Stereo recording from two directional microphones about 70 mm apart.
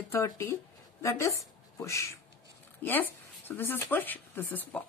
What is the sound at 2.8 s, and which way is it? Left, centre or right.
A woman's voice, left.